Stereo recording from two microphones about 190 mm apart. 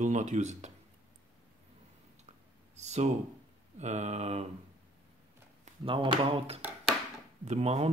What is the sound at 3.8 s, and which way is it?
Speech, 35° right (ahead or behind).